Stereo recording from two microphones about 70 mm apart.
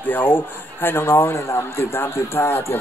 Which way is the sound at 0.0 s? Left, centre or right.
Left.